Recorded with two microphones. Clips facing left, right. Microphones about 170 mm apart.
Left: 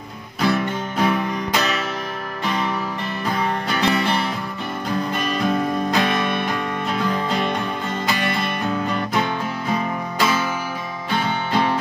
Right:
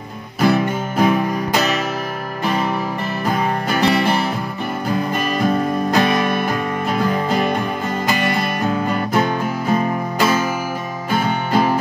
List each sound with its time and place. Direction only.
0.4 s music: 10° right (ahead or behind)
11.5 s music: 10° right (ahead or behind)